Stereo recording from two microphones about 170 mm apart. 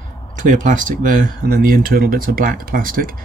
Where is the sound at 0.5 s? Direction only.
50° right (ahead or behind).